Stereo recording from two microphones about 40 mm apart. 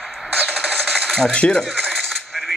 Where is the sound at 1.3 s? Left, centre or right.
Left.